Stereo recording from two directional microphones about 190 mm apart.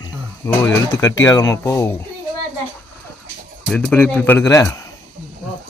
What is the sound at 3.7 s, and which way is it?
A man's voice, 5° left (ahead or behind).